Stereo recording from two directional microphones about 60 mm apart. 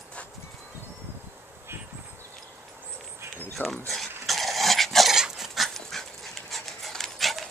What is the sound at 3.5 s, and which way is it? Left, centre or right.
Speech, centre.